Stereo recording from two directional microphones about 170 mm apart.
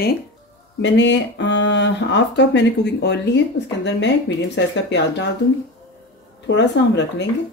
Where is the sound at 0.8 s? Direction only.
90° left.